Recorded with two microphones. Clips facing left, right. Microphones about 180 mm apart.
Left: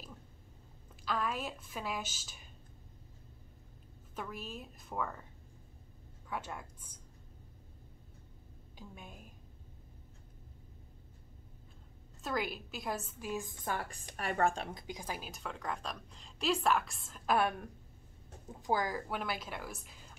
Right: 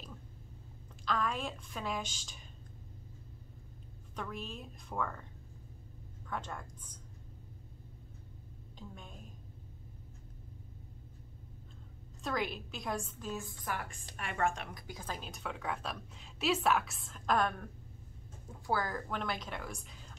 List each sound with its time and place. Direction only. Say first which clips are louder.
1.0 s a woman's voice: right 1 dB; 5° left (ahead or behind)
4.1 s a woman's voice: right 1 dB; 5° left (ahead or behind)
6.2 s speech: even; 10° left (ahead or behind)
8.7 s a woman's voice: right 1 dB; 10° left (ahead or behind)
12.2 s a woman's voice: right 1 dB; centre (ahead or behind)
13.3 s a woman's voice: left 3 dB; 15° left (ahead or behind)
13.7 s a woman's voice: left 1 dB; 35° left (ahead or behind); by 20.1 s 5° left (ahead or behind)